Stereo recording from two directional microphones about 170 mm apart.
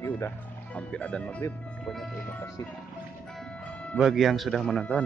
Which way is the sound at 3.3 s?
5° left (ahead or behind).